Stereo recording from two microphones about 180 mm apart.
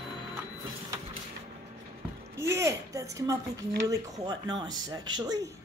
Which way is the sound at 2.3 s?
15° right (ahead or behind).